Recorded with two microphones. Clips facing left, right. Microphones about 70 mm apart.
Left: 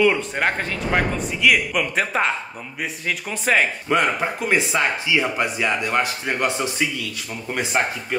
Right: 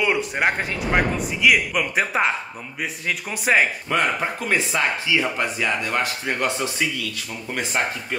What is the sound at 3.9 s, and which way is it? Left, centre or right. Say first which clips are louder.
Speech: left 4 dB; centre.